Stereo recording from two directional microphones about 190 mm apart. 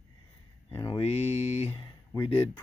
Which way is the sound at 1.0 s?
35° left (ahead or behind).